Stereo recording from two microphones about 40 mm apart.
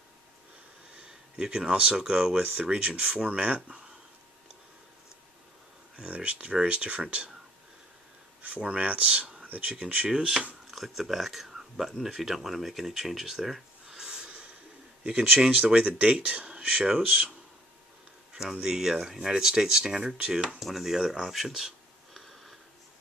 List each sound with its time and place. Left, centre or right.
0.9 s a sound: centre
2.0 s speech: centre
2.3 s speech: right
2.6 s speech: right
3.0 s speech: right
6.0 s speech: right
8.4 s speech: right
9.5 s speech: right
10.0 s speech: right
10.7 s speech: centre; by 14.5 s right
15.5 s speech: right
18.3 s speech: centre
20.5 s speech: centre
22.1 s sniff: centre